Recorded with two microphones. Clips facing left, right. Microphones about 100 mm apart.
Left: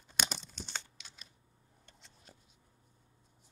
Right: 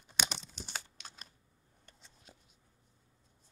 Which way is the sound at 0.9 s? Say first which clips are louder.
Right 5 dB; 45° right (ahead or behind).